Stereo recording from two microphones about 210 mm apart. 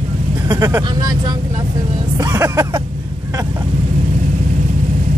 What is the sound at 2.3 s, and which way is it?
Speech, 15° right (ahead or behind).